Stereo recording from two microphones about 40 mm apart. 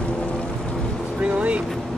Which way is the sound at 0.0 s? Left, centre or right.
Left.